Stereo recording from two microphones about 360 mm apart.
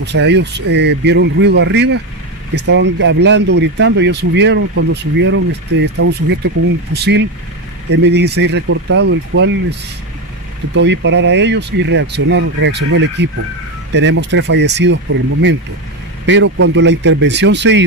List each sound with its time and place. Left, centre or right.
0.0 s speech: right
16.3 s speech: right